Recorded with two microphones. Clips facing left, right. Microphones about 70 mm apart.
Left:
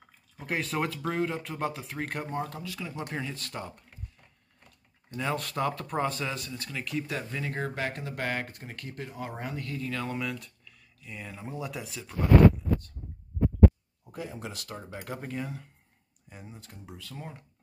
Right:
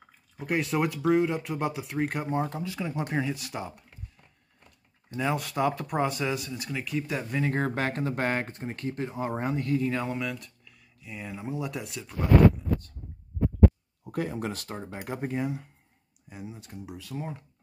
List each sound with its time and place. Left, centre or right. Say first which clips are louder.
0.4 s speech: right 4 dB; centre; by 3.0 s right
3.1 s speech: right 6 dB; centre
7.3 s speech: right 8 dB; right
10.0 s speech: right 2 dB; centre
14.1 s speech: right 7 dB; right
14.9 s speech: right 5 dB; centre
16.3 s speech: right 5 dB; centre